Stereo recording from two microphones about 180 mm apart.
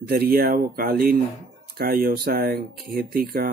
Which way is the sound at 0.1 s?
60° right (ahead or behind).